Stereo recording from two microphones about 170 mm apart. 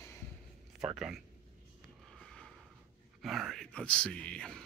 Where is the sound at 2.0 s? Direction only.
Centre (ahead or behind).